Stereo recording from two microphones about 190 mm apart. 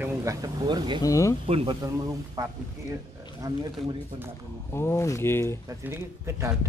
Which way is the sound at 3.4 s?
20° right (ahead or behind).